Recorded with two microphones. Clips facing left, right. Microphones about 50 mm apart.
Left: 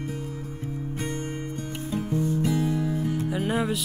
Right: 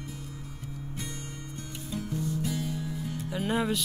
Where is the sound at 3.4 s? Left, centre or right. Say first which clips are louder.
Right 1 dB; centre.